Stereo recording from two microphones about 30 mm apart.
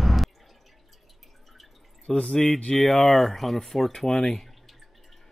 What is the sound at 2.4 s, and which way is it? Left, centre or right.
Speech, left.